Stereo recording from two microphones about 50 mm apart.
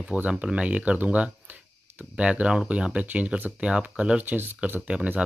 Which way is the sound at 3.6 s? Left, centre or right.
Right.